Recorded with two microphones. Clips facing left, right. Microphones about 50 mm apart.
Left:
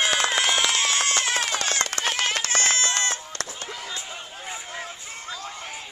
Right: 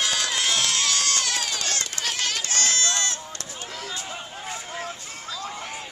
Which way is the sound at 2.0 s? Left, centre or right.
Left.